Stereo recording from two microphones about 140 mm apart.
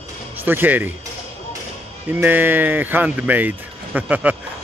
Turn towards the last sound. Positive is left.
turn(degrees=-10)  # may be behind; listen again after turning